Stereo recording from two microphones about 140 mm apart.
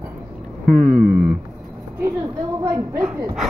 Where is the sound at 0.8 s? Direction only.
70° right (ahead or behind).